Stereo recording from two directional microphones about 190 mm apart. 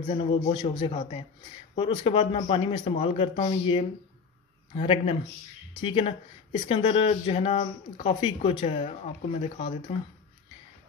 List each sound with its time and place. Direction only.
0.1 s speech: 30° left (ahead or behind)